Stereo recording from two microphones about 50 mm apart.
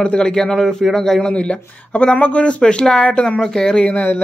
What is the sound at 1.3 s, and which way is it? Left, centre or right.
A man's voice, left.